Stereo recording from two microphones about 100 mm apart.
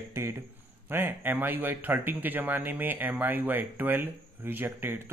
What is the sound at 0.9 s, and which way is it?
Speech, 20° right (ahead or behind).